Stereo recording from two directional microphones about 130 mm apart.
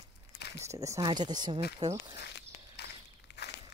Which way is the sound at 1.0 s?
35° right (ahead or behind).